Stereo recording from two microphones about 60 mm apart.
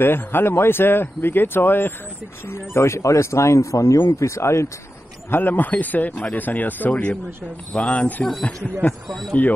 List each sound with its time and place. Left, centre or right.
0.0 s speech: left
5.3 s speech: left